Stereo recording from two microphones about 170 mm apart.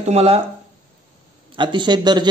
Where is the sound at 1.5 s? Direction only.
30° right (ahead or behind).